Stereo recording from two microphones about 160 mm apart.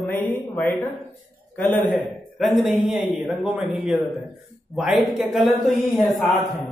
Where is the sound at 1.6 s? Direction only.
55° left (ahead or behind).